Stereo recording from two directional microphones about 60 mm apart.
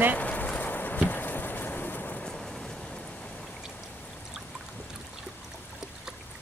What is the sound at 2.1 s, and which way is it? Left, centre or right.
Rain, centre.